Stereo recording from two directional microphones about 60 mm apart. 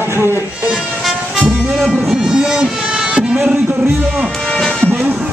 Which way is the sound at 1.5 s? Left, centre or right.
Centre.